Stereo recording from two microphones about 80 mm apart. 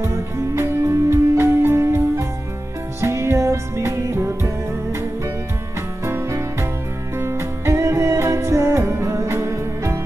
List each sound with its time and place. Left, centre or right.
0.0 s music: right
6.0 s music: right